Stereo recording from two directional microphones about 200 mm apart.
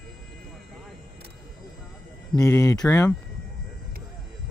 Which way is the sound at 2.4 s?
15° left (ahead or behind).